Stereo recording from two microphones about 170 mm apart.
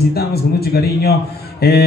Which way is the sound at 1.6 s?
70° left (ahead or behind).